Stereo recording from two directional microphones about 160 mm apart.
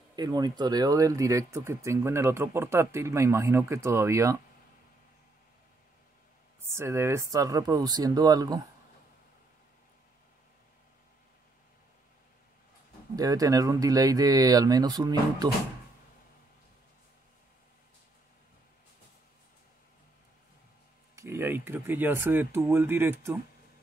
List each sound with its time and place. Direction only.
0.1 s speech: 25° right (ahead or behind)
6.6 s speech: 15° right (ahead or behind)
13.1 s speech: 20° right (ahead or behind)
21.2 s speech: 15° right (ahead or behind)